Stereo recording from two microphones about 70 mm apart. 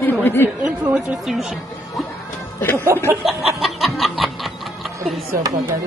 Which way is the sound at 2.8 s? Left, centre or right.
Right.